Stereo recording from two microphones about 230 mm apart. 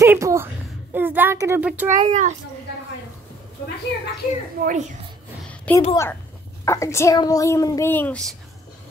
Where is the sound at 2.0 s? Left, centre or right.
Right.